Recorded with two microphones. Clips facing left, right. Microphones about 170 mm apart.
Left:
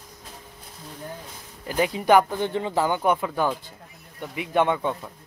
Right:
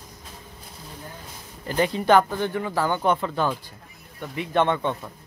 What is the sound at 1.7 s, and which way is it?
Speech, 5° left (ahead or behind).